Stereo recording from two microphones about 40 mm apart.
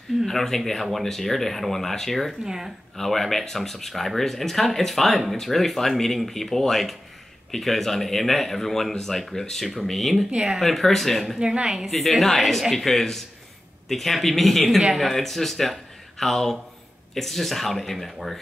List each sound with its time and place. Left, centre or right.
0.3 s speech: centre
2.4 s a woman's voice: centre
3.0 s speech: centre
10.3 s speech: centre
10.6 s speech: centre
11.3 s a woman's voice: centre
11.9 s speech: centre